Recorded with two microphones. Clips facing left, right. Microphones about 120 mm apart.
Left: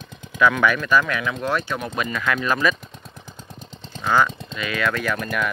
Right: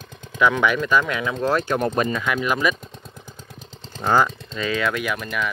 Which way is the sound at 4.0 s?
35° right (ahead or behind).